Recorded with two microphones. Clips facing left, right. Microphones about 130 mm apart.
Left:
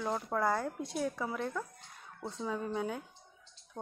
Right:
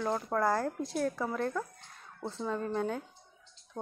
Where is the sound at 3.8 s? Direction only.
25° right (ahead or behind).